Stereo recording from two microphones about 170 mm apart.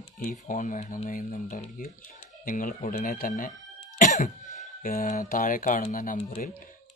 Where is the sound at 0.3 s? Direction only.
50° left (ahead or behind).